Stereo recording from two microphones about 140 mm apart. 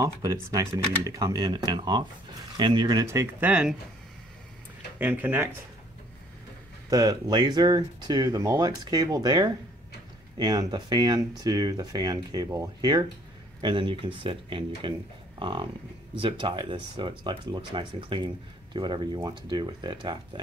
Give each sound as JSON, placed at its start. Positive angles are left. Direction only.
{"t": 0.0, "sound": "speech", "side_deg": -25}
{"t": 4.9, "sound": "speech", "side_deg": -10}
{"t": 6.9, "sound": "speech", "side_deg": -25}